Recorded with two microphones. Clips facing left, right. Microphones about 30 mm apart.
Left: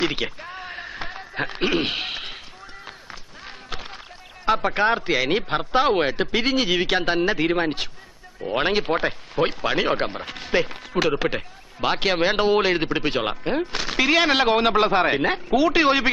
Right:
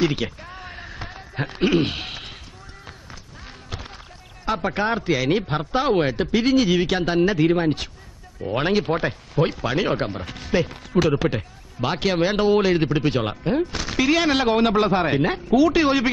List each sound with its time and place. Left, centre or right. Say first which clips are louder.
0.0 s a sound: right 2 dB; centre
3.1 s run: left 2 dB; centre
4.5 s speech: left 3 dB; centre